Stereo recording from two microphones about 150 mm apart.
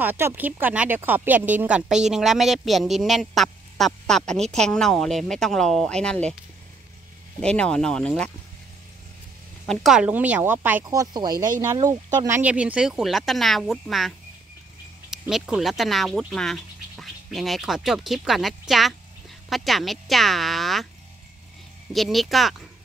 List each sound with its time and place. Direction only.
0.0 s speech: 15° right (ahead or behind); by 6.3 s 5° left (ahead or behind)
7.4 s speech: 5° left (ahead or behind)
9.7 s speech: 5° right (ahead or behind); by 12.4 s 25° right (ahead or behind)
12.4 s speech: 10° right (ahead or behind)
21.9 s speech: centre (ahead or behind)